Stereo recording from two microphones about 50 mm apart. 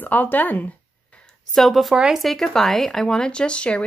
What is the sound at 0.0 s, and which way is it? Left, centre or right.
Speech, left.